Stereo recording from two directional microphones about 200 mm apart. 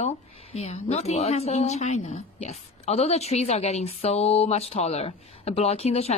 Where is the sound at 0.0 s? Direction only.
30° left (ahead or behind).